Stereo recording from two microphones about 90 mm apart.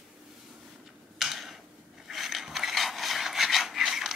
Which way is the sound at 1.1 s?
5° right (ahead or behind).